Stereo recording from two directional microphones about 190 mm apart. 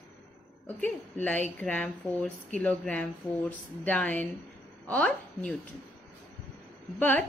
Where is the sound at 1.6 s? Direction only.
5° left (ahead or behind).